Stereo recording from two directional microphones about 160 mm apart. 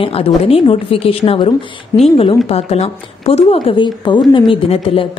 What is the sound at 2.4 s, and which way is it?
A woman's voice, 40° left (ahead or behind).